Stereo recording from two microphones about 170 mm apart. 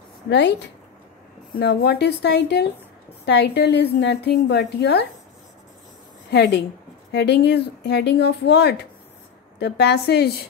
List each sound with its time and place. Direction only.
0.3 s speech: 90° left
1.6 s a woman's voice: 75° left (ahead or behind)
6.3 s a woman's voice: 80° left